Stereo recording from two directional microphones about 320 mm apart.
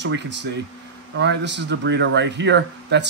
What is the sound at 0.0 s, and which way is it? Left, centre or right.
Speech, right.